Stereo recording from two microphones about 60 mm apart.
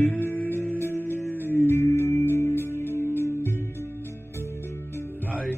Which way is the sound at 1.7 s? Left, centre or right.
Left.